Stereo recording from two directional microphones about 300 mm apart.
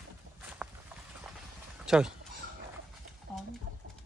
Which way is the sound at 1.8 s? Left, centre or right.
Centre.